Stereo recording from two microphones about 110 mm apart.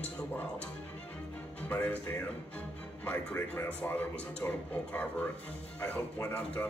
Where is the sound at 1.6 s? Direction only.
15° left (ahead or behind).